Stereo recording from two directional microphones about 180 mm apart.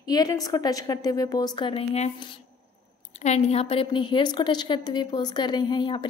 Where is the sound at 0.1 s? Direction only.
20° left (ahead or behind).